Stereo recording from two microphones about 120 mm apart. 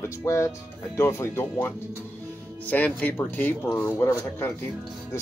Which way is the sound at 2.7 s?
15° left (ahead or behind).